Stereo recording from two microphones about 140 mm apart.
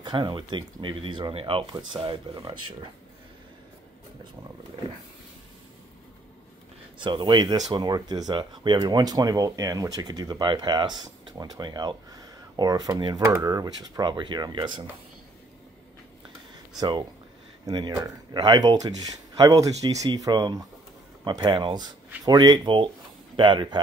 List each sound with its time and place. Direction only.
0.0 s speech: 30° right (ahead or behind)
7.0 s speech: 35° right (ahead or behind)
17.6 s speech: 30° right (ahead or behind)